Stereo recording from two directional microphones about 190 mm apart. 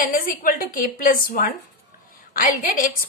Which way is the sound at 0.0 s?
45° left (ahead or behind).